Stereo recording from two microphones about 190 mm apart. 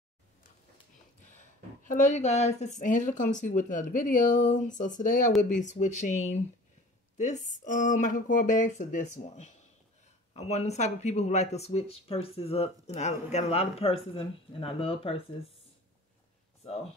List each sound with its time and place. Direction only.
1.3 s speech: 40° left (ahead or behind)
16.6 s speech: 30° left (ahead or behind)